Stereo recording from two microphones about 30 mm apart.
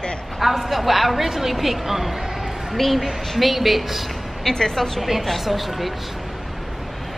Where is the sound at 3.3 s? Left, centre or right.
Centre.